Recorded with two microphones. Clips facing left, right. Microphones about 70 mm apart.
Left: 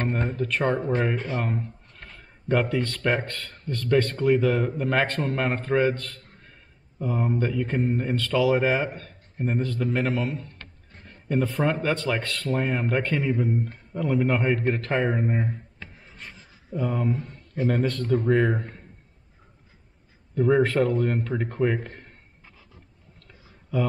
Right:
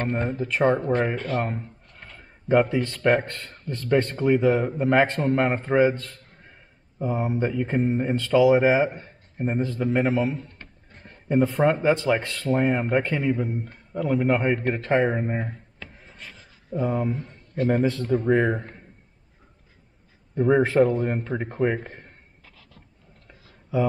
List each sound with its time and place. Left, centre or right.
0.0 s speech: centre
1.1 s speech: centre
1.4 s a sound: centre
2.6 s speech: centre
16.0 s a sound: centre
16.7 s speech: centre
20.3 s speech: centre
23.7 s speech: centre